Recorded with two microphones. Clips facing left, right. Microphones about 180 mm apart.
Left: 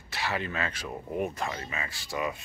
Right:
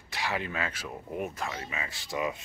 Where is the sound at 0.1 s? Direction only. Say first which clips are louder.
Left 1 dB; 15° right (ahead or behind).